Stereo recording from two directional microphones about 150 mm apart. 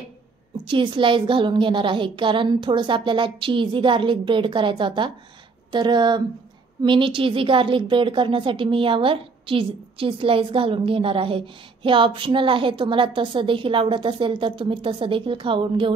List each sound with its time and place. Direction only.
0.7 s a woman's voice: 35° right (ahead or behind)